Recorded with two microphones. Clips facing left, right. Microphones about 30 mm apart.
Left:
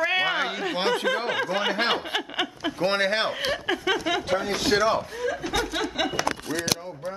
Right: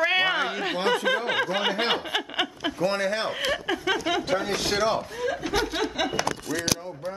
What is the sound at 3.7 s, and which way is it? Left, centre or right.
A man's voice, centre.